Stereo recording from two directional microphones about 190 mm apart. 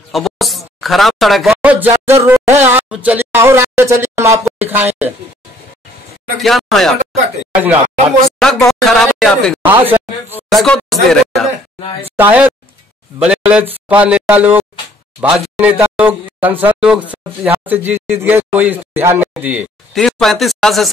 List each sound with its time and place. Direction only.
0.1 s speech: centre (ahead or behind)
6.4 s speech: centre (ahead or behind)
8.4 s speech: centre (ahead or behind)
9.7 s speech: 10° right (ahead or behind)
10.5 s speech: centre (ahead or behind)
12.2 s speech: 10° right (ahead or behind)
15.8 s a sound: 10° right (ahead or behind)
16.6 s speech: 5° right (ahead or behind)